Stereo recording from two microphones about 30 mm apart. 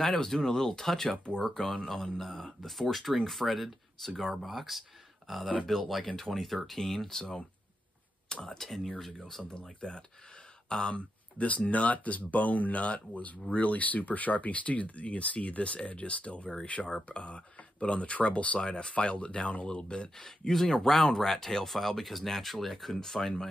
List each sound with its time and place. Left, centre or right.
0.0 s speech: centre
1.9 s speech: centre
8.3 s speech: left
8.5 s speech: centre
9.8 s speech: left
11.0 s speech: left
17.1 s speech: left
20.2 s speech: centre
20.7 s speech: centre
22.9 s speech: centre